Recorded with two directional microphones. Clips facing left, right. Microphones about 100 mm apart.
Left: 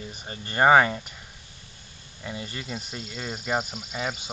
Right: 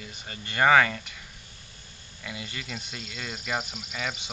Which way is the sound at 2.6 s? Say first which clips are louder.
Left 3 dB; 25° left (ahead or behind).